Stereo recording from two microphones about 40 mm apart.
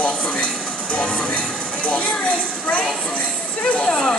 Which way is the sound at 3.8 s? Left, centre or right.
Centre.